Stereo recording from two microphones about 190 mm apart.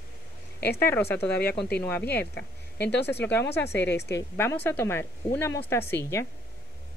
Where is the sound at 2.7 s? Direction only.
60° left (ahead or behind).